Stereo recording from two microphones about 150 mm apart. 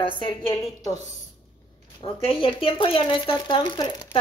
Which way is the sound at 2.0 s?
35° left (ahead or behind).